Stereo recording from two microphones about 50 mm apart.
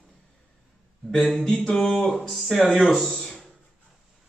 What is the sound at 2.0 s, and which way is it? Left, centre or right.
A man's voice, centre.